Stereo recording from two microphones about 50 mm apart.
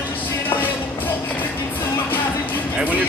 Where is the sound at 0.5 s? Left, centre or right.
Left.